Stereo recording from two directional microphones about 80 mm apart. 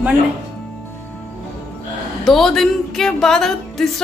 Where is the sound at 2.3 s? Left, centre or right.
Centre.